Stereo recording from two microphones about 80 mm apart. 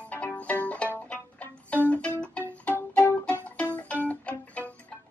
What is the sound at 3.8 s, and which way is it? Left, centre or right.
Music, centre.